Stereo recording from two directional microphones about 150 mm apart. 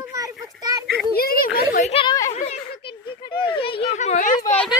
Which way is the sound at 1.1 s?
75° left (ahead or behind).